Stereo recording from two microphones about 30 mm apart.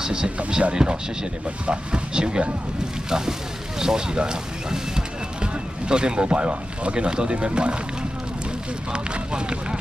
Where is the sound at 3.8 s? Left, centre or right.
Right.